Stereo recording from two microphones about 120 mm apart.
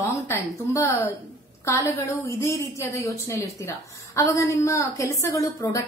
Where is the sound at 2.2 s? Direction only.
25° left (ahead or behind).